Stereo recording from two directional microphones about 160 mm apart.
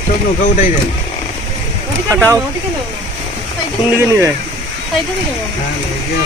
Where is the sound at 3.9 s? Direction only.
15° right (ahead or behind).